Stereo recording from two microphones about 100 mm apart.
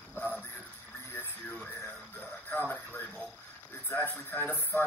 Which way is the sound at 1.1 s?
20° left (ahead or behind).